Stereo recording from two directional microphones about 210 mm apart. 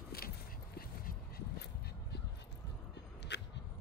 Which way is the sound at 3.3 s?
55° left (ahead or behind).